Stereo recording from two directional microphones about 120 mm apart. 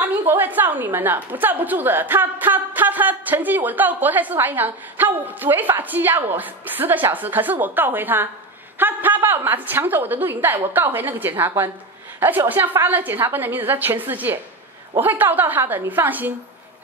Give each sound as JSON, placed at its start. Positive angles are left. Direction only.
{"t": 0.0, "sound": "a woman's voice", "side_deg": -15}